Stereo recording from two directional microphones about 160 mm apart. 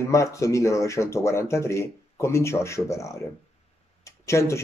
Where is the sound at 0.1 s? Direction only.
20° left (ahead or behind).